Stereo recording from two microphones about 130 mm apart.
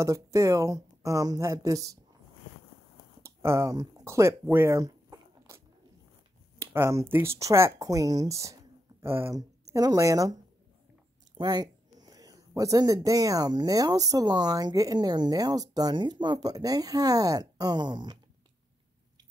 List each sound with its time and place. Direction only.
0.0 s speech: 25° right (ahead or behind)
3.2 s a sound: 20° right (ahead or behind)
6.6 s speech: 20° right (ahead or behind)